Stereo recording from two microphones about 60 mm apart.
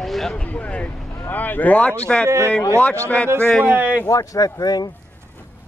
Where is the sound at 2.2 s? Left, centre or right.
Right.